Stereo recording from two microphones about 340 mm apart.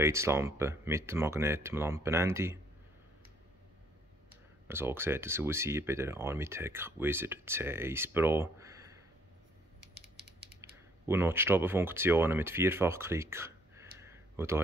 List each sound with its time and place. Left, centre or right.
0.0 s speech: centre
4.6 s speech: centre
9.8 s mechanisms: right
11.1 s speech: centre